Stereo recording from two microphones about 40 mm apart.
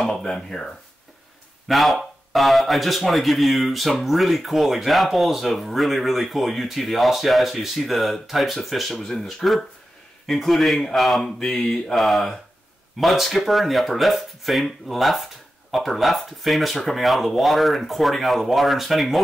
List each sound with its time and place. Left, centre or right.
0.1 s speech: centre
1.7 s speech: centre